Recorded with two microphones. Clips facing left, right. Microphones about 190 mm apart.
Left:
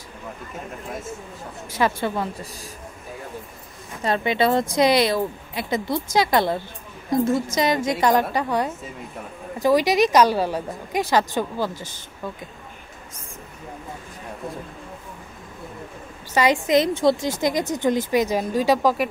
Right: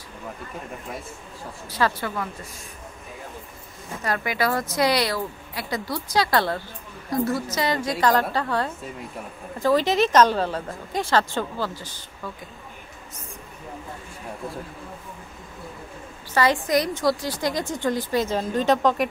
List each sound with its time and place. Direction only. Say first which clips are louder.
1.8 s a woman's voice: left 2 dB; 15° left (ahead or behind)
4.0 s a woman's voice: left 4 dB; 25° left (ahead or behind)
16.3 s a woman's voice: left 3 dB; 20° left (ahead or behind)